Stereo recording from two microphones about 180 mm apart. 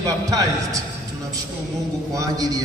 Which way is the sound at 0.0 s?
20° right (ahead or behind).